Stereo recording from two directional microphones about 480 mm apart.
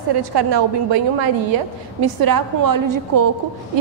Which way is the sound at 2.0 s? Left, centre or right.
Right.